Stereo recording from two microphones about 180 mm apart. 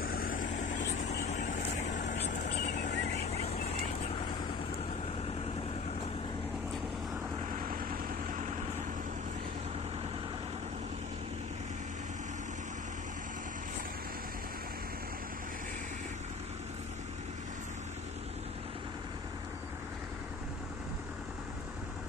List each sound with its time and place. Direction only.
0.0 s vehicle: 55° left (ahead or behind)
7.7 s vehicle: 50° right (ahead or behind)